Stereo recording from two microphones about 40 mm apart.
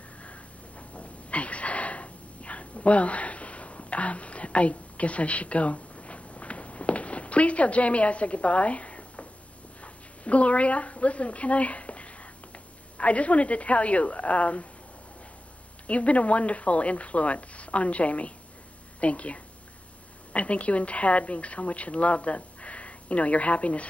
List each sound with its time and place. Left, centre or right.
0.2 s a sound: left
9.8 s a woman's voice: left
15.9 s speech: left